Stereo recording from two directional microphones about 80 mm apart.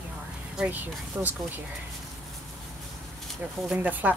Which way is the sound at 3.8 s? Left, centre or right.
Right.